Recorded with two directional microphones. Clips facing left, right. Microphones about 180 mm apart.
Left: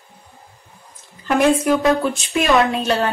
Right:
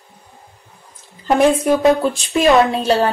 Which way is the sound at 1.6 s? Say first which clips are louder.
Right 3 dB; centre (ahead or behind).